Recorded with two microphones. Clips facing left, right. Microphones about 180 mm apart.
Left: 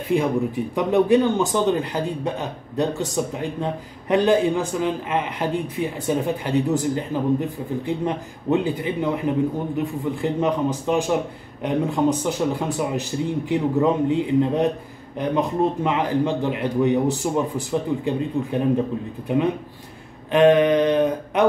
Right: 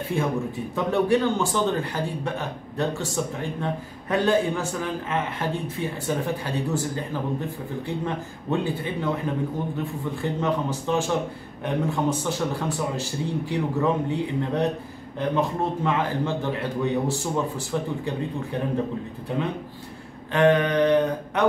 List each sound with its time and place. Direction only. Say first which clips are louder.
0.1 s a man's voice: left 6 dB; 15° left (ahead or behind)